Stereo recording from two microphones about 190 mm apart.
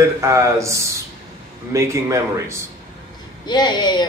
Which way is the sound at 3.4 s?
20° left (ahead or behind).